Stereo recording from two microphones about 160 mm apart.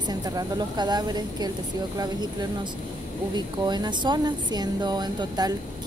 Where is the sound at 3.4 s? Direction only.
25° right (ahead or behind).